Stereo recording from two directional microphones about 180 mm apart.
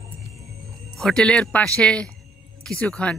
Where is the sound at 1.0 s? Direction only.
5° left (ahead or behind).